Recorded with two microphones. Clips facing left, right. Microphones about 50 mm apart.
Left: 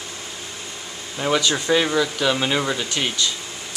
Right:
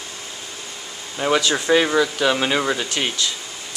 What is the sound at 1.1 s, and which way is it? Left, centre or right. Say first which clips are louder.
Speech: right 2 dB; centre.